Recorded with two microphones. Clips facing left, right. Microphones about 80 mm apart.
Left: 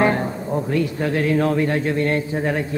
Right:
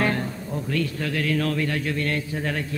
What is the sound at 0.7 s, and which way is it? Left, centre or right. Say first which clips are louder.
A man's voice: left 4 dB; left.